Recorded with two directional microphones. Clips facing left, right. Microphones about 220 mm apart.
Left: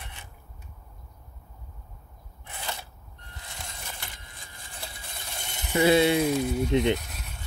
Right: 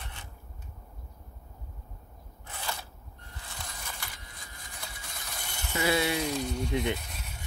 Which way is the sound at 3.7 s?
25° left (ahead or behind).